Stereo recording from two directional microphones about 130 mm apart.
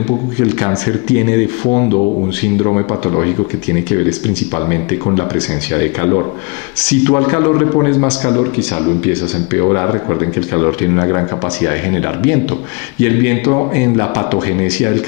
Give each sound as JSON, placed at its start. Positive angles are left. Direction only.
{"t": 0.4, "sound": "a man's voice", "side_deg": 20}
{"t": 5.1, "sound": "a man's voice", "side_deg": 20}